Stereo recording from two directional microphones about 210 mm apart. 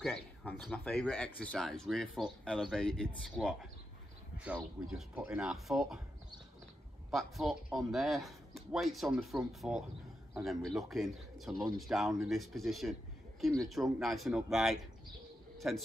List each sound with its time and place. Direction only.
0.5 s a man's voice: 5° left (ahead or behind)
4.6 s a man's voice: 5° right (ahead or behind)
7.1 s a man's voice: centre (ahead or behind)
15.5 s a sound: centre (ahead or behind)